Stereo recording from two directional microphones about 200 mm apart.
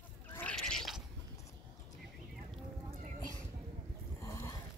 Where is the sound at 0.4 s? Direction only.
5° left (ahead or behind).